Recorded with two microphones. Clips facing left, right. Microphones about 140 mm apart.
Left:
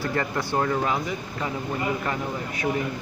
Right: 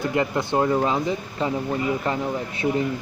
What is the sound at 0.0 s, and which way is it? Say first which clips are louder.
Speech: right 4 dB; 20° right (ahead or behind).